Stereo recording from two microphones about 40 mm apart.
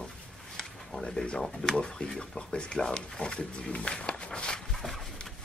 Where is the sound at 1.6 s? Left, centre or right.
Left.